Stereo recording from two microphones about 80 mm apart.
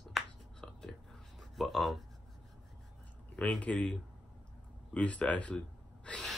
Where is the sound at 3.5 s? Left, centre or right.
Centre.